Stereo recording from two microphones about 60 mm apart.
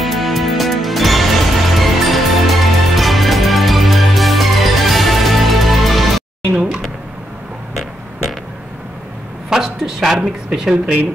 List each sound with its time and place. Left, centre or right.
0.0 s music: centre
6.5 s speech: centre
9.5 s a woman's voice: centre